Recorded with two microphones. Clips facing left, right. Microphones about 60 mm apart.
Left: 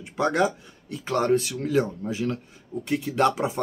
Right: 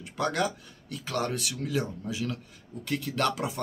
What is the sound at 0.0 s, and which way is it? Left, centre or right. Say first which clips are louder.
Speech: left 6 dB; left.